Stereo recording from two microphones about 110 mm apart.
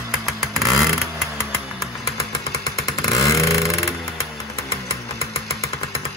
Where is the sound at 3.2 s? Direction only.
30° left (ahead or behind).